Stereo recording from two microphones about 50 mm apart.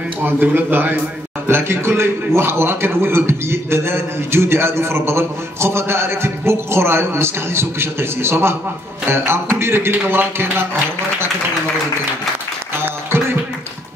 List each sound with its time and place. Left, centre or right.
0.2 s a man's voice: right
12.7 s music: right